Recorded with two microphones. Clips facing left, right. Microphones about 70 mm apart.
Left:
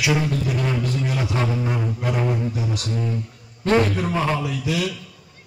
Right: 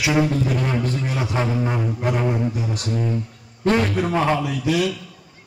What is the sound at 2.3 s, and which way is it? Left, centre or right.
Speech, right.